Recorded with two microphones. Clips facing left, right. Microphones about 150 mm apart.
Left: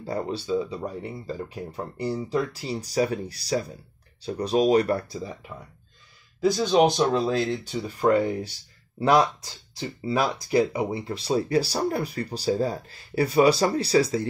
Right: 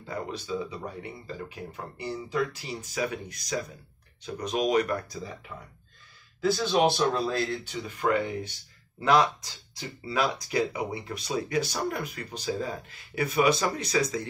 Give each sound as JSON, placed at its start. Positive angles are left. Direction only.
{"t": 0.0, "sound": "speech", "side_deg": 35}
{"t": 1.2, "sound": "speech", "side_deg": 35}
{"t": 6.4, "sound": "speech", "side_deg": 20}
{"t": 7.6, "sound": "speech", "side_deg": 35}